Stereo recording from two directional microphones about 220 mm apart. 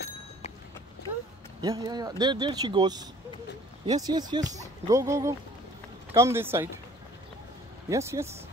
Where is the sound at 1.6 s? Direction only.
15° right (ahead or behind).